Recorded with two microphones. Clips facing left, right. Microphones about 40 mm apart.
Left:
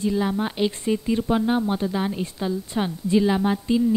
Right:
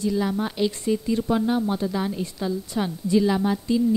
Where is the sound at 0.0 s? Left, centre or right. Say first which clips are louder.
Left 1 dB; left.